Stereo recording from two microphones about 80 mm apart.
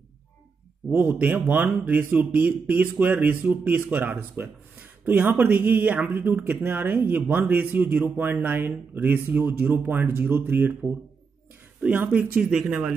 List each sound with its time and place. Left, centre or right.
0.9 s speech: centre